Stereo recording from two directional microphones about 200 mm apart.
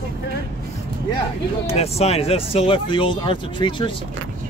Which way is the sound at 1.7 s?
30° left (ahead or behind).